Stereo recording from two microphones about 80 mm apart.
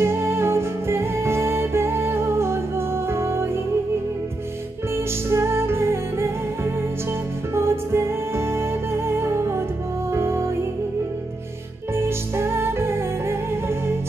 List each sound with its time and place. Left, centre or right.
0.0 s music: right
4.9 s music: right
11.9 s music: right